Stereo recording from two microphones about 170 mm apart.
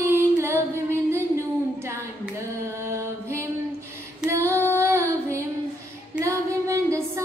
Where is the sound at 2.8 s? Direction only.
15° right (ahead or behind).